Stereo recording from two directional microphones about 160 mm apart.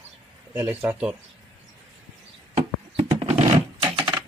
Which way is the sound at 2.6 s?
35° right (ahead or behind).